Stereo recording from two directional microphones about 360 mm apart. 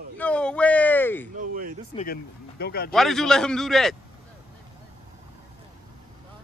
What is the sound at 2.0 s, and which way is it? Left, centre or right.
Speech, left.